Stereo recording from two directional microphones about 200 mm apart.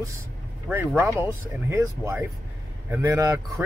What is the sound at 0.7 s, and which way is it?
Speech, 10° right (ahead or behind).